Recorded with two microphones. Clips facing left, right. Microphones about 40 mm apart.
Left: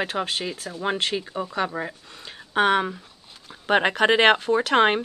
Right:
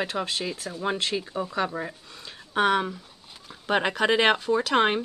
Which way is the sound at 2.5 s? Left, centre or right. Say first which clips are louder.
Left 2 dB; left.